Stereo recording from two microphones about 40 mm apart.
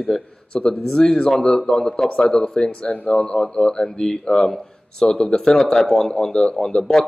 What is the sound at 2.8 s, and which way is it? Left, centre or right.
Speech, left.